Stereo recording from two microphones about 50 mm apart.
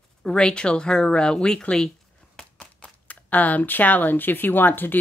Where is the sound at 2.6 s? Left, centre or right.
Centre.